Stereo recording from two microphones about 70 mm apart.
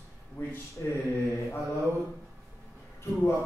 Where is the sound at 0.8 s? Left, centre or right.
Left.